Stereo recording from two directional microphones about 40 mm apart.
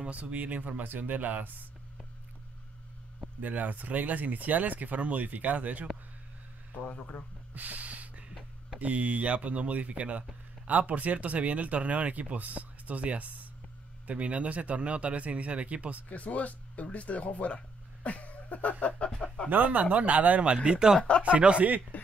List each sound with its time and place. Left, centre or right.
0.1 s speech: right
3.3 s speech: right
7.5 s gasp: right
8.7 s speech: right
16.1 s speech: left
19.2 s a sound: left
19.5 s speech: right
20.5 s speech: right
21.9 s a sound: left